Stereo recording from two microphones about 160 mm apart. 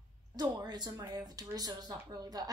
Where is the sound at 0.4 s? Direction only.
25° right (ahead or behind).